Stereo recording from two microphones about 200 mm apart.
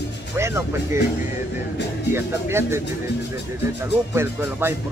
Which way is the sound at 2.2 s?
15° right (ahead or behind).